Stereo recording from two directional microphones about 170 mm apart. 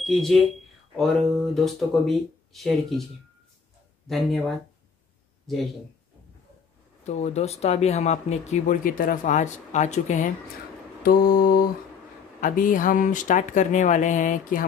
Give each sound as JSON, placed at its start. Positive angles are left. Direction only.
{"t": 0.0, "sound": "speech", "side_deg": 0}
{"t": 4.1, "sound": "speech", "side_deg": 0}
{"t": 7.1, "sound": "speech", "side_deg": 40}
{"t": 11.0, "sound": "mantra", "side_deg": 60}
{"t": 12.4, "sound": "speech", "side_deg": 55}